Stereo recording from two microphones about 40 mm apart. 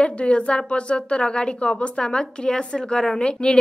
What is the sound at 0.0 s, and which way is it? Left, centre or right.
Speech, left.